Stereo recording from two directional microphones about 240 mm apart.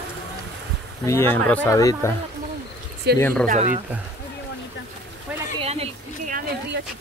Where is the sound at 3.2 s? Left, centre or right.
Centre.